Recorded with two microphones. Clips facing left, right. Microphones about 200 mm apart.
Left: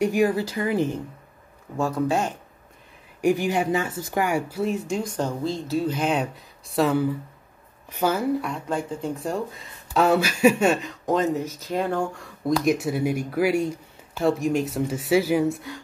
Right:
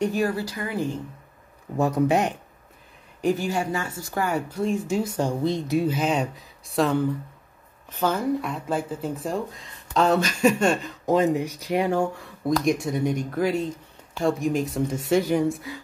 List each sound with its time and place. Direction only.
0.0 s speech: 15° left (ahead or behind)
1.8 s speech: 20° right (ahead or behind)
3.2 s speech: 15° left (ahead or behind); by 5.9 s 15° right (ahead or behind)
5.9 s speech: centre (ahead or behind)
8.4 s speech: 5° right (ahead or behind)